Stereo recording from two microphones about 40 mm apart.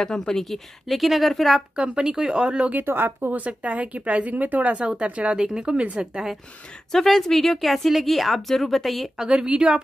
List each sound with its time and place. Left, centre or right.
0.0 s a woman's voice: centre
1.8 s speech: right
2.7 s speech: right
3.3 s speech: right
6.9 s a woman's voice: centre
9.1 s speech: centre